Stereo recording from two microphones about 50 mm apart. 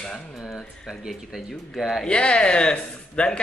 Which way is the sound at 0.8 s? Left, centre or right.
Centre.